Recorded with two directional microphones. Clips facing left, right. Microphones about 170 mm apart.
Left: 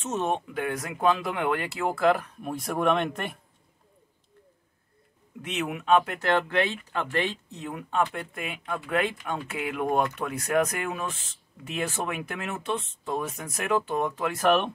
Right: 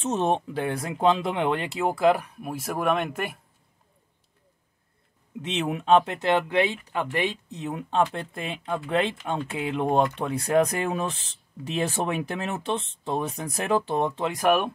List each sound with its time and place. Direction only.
0.0 s speech: 35° right (ahead or behind); by 3.3 s 5° right (ahead or behind)
5.4 s speech: 25° right (ahead or behind)
14.3 s speech: 10° right (ahead or behind)